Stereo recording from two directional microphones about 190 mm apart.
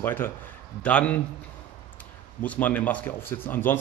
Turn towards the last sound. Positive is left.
turn(degrees=10)  # may be behind; listen again after turning